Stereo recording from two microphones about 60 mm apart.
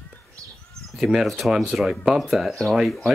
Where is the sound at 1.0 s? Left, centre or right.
Centre.